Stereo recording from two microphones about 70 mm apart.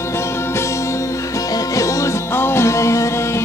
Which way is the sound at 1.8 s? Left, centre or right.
Left.